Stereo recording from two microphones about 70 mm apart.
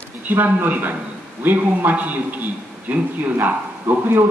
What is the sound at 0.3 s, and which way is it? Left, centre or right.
A man's voice, right.